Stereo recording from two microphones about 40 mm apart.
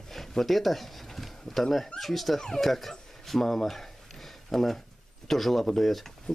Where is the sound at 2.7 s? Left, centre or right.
Centre.